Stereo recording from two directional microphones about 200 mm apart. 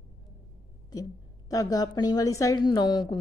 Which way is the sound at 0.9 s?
20° left (ahead or behind).